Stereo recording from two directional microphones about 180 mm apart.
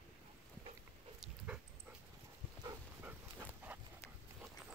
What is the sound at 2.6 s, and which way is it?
Dog, 20° right (ahead or behind).